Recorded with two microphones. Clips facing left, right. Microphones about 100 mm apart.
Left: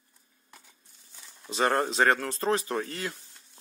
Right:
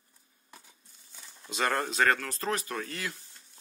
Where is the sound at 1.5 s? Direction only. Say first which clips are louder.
Left 4 dB; 30° left (ahead or behind).